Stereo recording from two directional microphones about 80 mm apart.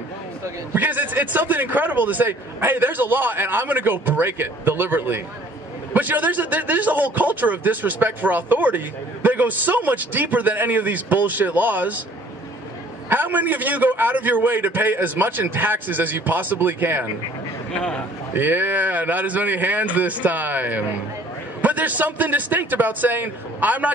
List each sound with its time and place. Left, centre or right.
0.7 s speech: right
13.1 s speech: right
17.7 s a man's voice: centre
18.3 s speech: right